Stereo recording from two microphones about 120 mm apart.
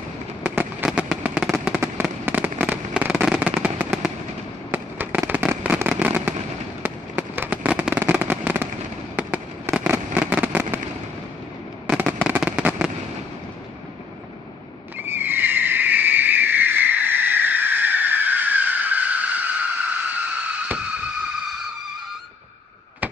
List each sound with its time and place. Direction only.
0.4 s fireworks: 15° right (ahead or behind)
0.8 s fireworks: 5° right (ahead or behind)
12.1 s fireworks: 15° right (ahead or behind)
15.0 s neigh: 15° right (ahead or behind)